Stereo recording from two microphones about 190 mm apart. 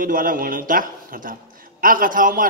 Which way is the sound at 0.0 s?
45° right (ahead or behind).